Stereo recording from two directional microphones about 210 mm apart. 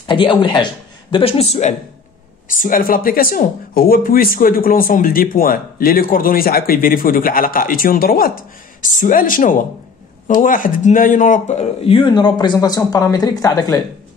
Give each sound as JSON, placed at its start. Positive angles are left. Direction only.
{"t": 0.0, "sound": "speech", "side_deg": 25}